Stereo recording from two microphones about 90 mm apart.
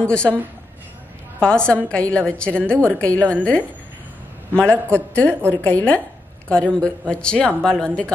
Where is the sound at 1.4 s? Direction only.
10° left (ahead or behind).